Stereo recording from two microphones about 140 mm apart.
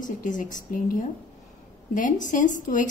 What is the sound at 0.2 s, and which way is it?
A woman's voice, 70° left (ahead or behind).